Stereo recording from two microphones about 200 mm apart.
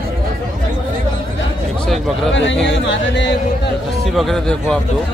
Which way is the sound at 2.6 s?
65° left (ahead or behind).